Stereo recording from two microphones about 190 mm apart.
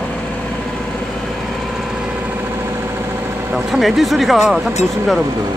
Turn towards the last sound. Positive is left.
turn(degrees=0)  # may be behind; listen again after turning